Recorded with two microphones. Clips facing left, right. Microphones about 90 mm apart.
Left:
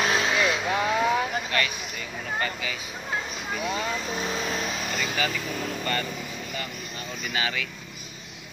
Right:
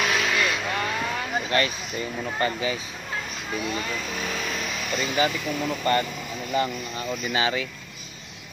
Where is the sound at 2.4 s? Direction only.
30° right (ahead or behind).